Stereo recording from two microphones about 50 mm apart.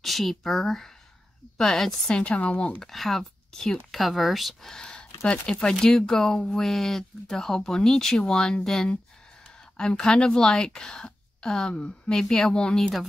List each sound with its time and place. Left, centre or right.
0.0 s a woman's voice: centre
2.1 s speech: left
2.8 s speech: centre